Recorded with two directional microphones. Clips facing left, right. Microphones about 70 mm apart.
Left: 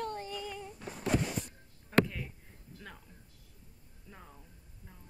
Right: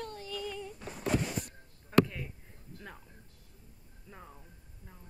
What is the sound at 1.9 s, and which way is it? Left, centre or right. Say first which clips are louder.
A woman's voice: right 2 dB; centre.